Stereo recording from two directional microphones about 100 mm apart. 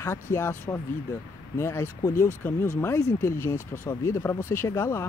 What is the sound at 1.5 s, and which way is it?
Speech, 25° left (ahead or behind).